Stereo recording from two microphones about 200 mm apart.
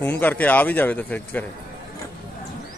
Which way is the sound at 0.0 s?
10° left (ahead or behind).